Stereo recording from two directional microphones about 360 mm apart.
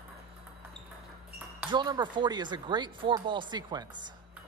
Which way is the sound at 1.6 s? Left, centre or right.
Centre.